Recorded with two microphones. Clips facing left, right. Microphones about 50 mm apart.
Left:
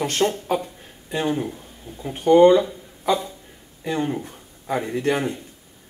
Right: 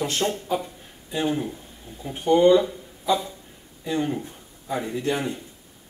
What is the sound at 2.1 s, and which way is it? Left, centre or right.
Speech, left.